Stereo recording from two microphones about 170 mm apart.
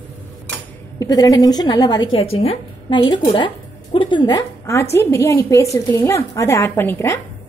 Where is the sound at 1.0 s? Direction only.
20° left (ahead or behind).